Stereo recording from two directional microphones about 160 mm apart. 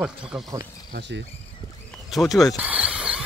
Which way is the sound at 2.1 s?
Centre (ahead or behind).